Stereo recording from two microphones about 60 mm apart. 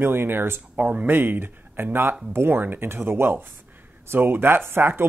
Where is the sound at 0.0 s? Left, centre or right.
Right.